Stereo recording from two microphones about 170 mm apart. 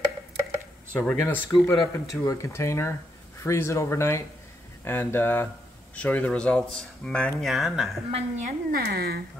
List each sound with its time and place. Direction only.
0.9 s speech: 10° left (ahead or behind)
8.1 s a woman's voice: 45° right (ahead or behind)
8.7 s speech: 65° right (ahead or behind)